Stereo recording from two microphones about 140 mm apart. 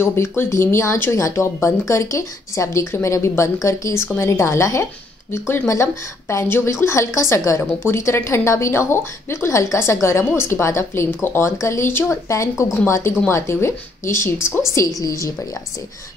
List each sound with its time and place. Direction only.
0.0 s speech: 15° left (ahead or behind)